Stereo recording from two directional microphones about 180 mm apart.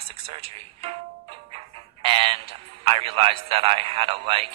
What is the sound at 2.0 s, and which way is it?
A man's voice, 30° right (ahead or behind).